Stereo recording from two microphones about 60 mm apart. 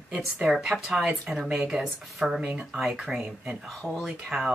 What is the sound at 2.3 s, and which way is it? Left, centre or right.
Speech, centre.